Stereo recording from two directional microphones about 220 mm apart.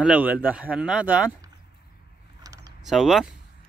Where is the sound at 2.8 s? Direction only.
Centre (ahead or behind).